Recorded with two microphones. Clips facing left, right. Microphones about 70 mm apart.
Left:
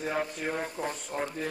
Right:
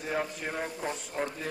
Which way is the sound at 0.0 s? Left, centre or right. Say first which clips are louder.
Left 1 dB; centre.